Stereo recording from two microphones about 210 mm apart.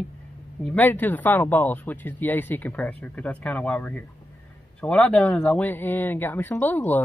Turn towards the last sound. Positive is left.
turn(degrees=10)  # may be behind; listen again after turning